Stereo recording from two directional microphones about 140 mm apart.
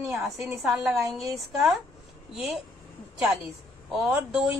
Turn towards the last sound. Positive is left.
turn(degrees=0)  # may be behind; listen again after turning